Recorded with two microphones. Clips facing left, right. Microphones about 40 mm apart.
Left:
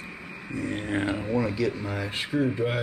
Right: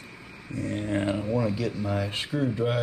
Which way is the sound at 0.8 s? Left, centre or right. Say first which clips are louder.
Right 1 dB; left.